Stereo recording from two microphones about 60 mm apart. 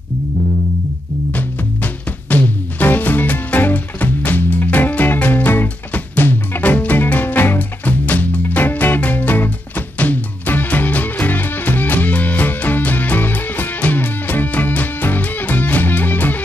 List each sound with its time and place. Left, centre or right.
1.3 s music: left